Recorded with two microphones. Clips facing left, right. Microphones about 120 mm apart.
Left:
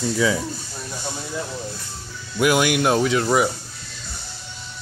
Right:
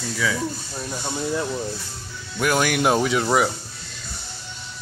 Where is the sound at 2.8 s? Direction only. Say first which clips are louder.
Left 1 dB; 5° right (ahead or behind).